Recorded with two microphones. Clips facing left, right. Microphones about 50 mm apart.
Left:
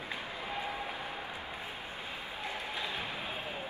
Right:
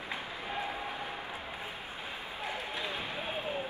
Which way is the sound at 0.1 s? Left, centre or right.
Right.